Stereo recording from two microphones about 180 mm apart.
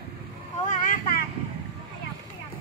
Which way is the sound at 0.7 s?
50° left (ahead or behind).